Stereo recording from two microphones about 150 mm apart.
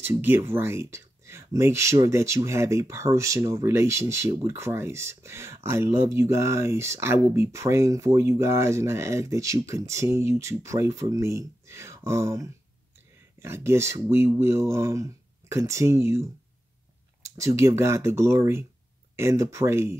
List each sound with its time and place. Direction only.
0.0 s speech: 15° right (ahead or behind)